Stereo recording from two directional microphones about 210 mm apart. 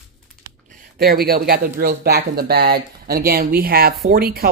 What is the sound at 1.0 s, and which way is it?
Speech, 45° right (ahead or behind).